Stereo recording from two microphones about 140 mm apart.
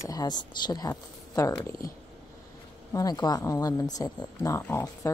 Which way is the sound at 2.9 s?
25° left (ahead or behind).